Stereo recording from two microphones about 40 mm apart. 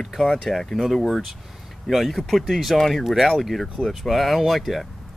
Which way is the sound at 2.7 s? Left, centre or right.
Centre.